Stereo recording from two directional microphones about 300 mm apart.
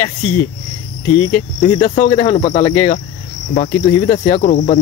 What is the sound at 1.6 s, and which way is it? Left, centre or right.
Cricket, left.